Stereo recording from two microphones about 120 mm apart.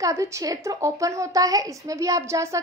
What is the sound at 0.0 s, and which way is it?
A woman's voice, 25° right (ahead or behind).